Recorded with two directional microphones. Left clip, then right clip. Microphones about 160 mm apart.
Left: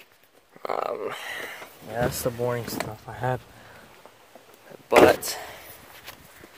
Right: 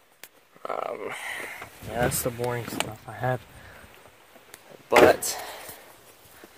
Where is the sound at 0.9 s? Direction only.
10° left (ahead or behind).